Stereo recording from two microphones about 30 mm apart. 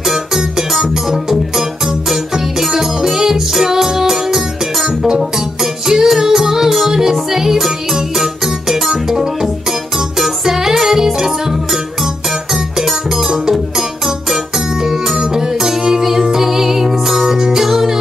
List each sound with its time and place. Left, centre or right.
0.0 s music: centre
5.6 s music: centre